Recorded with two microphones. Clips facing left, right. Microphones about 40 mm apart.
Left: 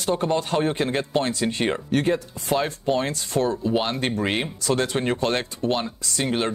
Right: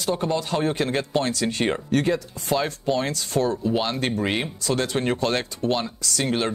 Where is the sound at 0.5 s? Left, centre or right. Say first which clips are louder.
Left 1 dB; left.